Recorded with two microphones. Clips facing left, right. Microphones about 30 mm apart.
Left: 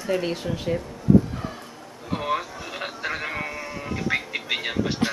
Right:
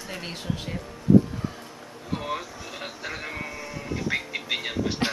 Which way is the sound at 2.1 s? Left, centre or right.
Centre.